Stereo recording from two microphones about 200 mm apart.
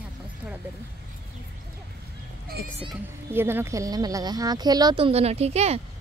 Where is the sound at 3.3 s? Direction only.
10° right (ahead or behind); by 5.8 s 30° right (ahead or behind).